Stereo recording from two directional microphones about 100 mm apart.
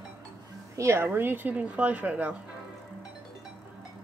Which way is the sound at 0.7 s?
30° right (ahead or behind).